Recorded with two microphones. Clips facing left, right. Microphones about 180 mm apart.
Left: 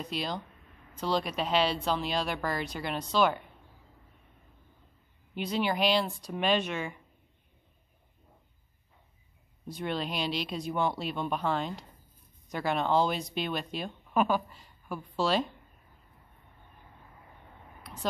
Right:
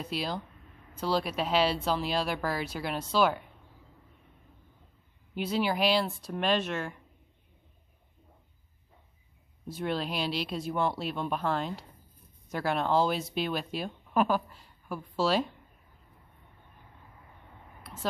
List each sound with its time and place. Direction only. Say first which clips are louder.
0.0 s speech: right 1 dB; 5° right (ahead or behind)
5.3 s speech: right 1 dB; 5° right (ahead or behind)
9.7 s speech: right 1 dB; 5° right (ahead or behind)